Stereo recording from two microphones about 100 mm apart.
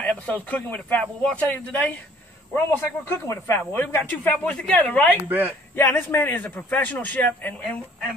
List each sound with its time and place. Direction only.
0.0 s a man's voice: 15° left (ahead or behind)